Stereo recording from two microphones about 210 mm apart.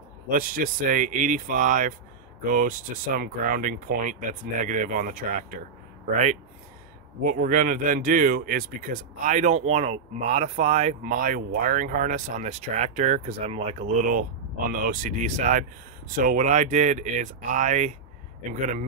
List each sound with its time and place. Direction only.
0.3 s speech: 40° right (ahead or behind)
3.2 s speech: 40° right (ahead or behind)
7.2 s speech: 40° right (ahead or behind)
14.7 s speech: 40° right (ahead or behind)